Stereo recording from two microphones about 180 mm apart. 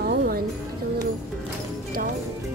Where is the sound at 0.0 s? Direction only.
65° right (ahead or behind).